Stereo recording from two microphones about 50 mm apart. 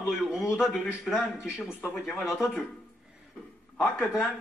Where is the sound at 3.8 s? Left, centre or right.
Left.